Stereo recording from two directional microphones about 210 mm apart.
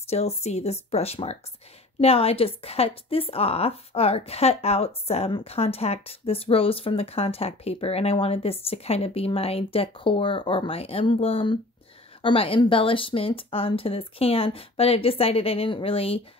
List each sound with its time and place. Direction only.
0.1 s a woman's voice: 30° left (ahead or behind)